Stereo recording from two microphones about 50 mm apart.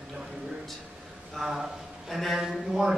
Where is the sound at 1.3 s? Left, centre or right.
Centre.